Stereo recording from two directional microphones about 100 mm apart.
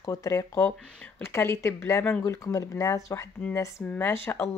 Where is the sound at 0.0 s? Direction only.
35° left (ahead or behind).